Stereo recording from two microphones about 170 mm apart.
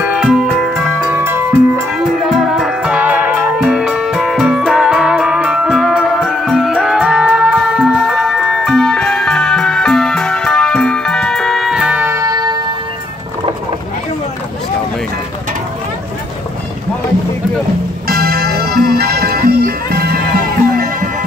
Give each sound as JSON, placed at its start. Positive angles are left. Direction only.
{"t": 0.0, "sound": "music", "side_deg": -5}
{"t": 0.9, "sound": "music", "side_deg": -10}
{"t": 2.2, "sound": "music", "side_deg": 0}
{"t": 18.0, "sound": "music", "side_deg": -65}